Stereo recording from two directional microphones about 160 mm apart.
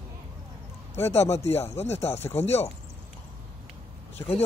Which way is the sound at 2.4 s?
40° left (ahead or behind).